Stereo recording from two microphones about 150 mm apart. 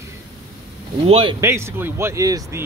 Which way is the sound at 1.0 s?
40° right (ahead or behind).